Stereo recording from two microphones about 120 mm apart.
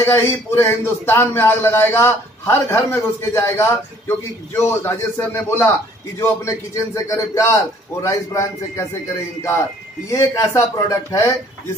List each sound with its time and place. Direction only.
0.0 s speech: 20° left (ahead or behind)
10.1 s speech: 25° left (ahead or behind)